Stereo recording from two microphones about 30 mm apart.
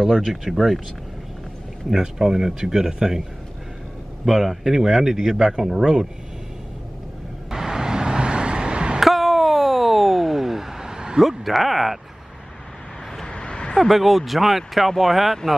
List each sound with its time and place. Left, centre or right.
0.0 s speech: centre
1.9 s speech: centre
4.3 s speech: centre
7.4 s vehicle: centre; by 9.0 s right
9.0 s a sound: centre; by 11.1 s right
11.1 s speech: centre
13.4 s a sound: left
13.7 s speech: centre